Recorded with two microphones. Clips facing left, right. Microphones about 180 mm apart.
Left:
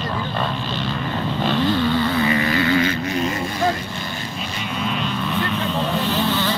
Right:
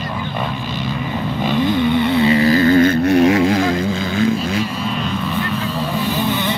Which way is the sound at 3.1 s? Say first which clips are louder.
Right 11 dB; 70° right (ahead or behind).